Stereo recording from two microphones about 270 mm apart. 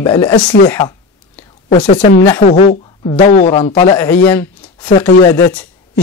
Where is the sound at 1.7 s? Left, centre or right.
Left.